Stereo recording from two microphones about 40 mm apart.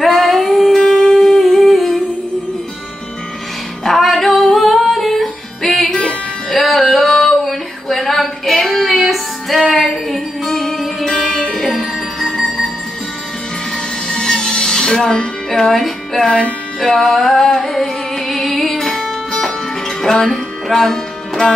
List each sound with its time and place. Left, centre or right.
0.0 s music: centre
1.4 s humming: centre
3.8 s music: centre
6.5 s a sound: centre
8.9 s music: centre
14.0 s music: centre
16.3 s speech: left
16.8 s music: centre